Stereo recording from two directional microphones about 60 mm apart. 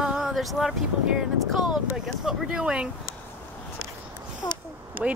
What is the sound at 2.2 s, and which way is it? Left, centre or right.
Speech, centre.